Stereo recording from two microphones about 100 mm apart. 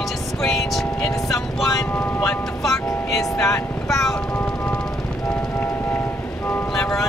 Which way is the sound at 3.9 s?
Centre (ahead or behind).